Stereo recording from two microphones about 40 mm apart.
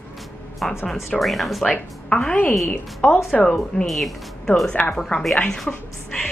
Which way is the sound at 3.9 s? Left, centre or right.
Centre.